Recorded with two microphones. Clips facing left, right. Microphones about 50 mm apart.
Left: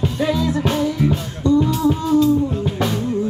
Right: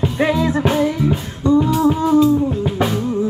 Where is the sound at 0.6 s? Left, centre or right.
Centre.